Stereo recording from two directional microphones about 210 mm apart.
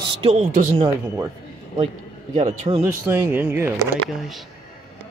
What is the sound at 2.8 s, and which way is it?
Speech, 10° right (ahead or behind).